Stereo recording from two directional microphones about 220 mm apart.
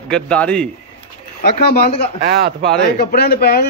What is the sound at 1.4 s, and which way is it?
Speech, 45° left (ahead or behind).